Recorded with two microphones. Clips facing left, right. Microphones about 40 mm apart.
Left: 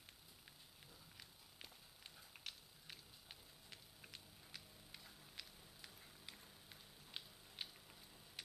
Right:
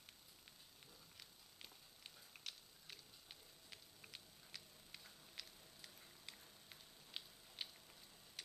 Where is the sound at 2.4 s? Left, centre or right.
Centre.